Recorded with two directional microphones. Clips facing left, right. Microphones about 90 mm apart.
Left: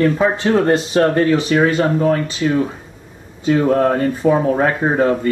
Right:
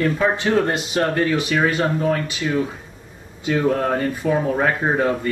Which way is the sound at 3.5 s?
30° left (ahead or behind).